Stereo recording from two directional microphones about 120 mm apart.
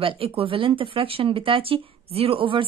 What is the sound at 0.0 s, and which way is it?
A woman's voice, 50° right (ahead or behind).